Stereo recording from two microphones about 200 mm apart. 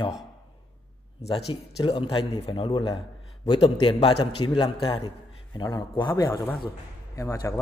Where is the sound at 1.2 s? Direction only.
30° left (ahead or behind).